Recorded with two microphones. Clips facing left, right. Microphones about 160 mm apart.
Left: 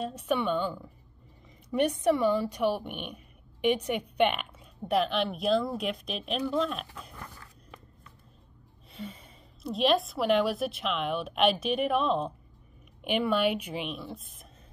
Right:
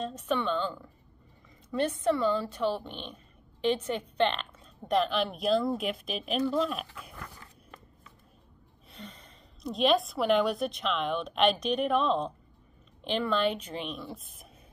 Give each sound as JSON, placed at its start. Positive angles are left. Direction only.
{"t": 0.0, "sound": "a woman's voice", "side_deg": 10}
{"t": 8.9, "sound": "a woman's voice", "side_deg": 5}